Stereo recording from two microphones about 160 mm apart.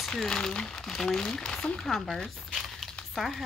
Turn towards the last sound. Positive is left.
turn(degrees=0)  # may be behind; listen again after turning